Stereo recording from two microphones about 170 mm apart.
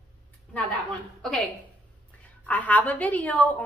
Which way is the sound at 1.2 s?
5° left (ahead or behind).